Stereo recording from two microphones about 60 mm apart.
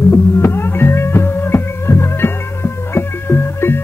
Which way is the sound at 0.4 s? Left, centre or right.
Left.